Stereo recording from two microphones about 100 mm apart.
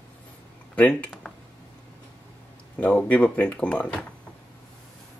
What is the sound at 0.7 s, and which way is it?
Speech, 15° left (ahead or behind).